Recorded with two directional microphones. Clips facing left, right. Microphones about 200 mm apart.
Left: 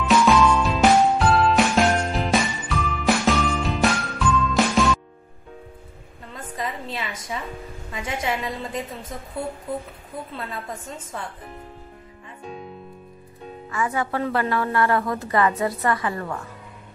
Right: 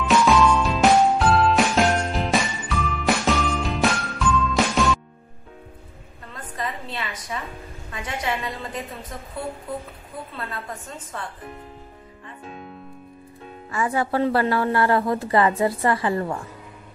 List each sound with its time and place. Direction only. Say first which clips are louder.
0.0 s music: even; centre (ahead or behind)
6.9 s a sound: left 1 dB; 25° left (ahead or behind)
7.9 s a woman's voice: left 1 dB; 20° left (ahead or behind)
10.3 s a woman's voice: even; 25° left (ahead or behind)
13.7 s a woman's voice: right 2 dB; 30° right (ahead or behind)